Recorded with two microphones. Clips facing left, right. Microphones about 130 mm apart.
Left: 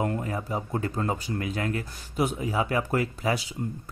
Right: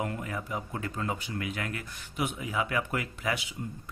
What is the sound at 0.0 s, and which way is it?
Speech, 35° left (ahead or behind).